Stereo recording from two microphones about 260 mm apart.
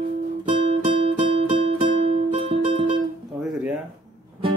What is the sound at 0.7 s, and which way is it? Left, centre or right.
Music, right.